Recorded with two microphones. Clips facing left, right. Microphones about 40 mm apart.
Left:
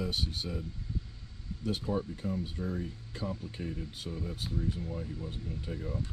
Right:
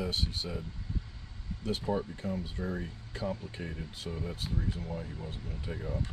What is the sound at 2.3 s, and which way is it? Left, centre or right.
Speech, right.